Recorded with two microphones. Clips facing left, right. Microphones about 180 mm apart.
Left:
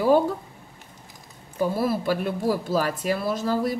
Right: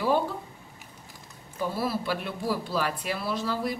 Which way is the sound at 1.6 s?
45° left (ahead or behind).